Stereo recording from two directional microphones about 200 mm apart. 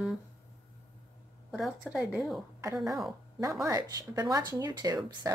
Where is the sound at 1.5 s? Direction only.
Centre (ahead or behind).